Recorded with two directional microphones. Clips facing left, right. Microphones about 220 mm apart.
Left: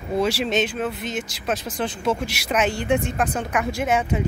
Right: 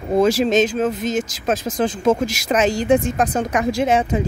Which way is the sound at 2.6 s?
90° right.